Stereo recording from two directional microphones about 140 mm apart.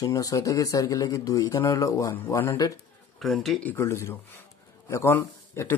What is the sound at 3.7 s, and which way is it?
A man's voice, 20° left (ahead or behind).